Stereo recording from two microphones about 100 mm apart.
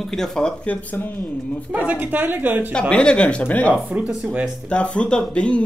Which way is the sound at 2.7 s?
10° left (ahead or behind).